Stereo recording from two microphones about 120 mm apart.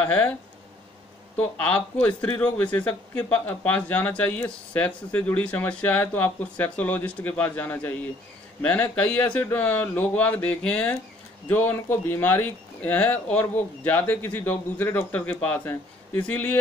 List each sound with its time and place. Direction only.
0.0 s a man's voice: 10° left (ahead or behind)
1.6 s a man's voice: 10° left (ahead or behind)